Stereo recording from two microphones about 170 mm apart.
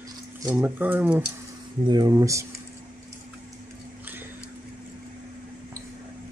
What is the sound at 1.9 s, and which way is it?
Speech, 25° right (ahead or behind).